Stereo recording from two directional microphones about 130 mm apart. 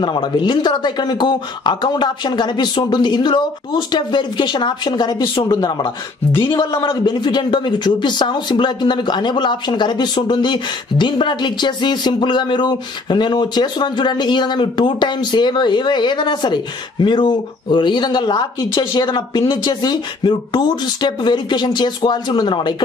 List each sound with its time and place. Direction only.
0.0 s speech: 35° left (ahead or behind)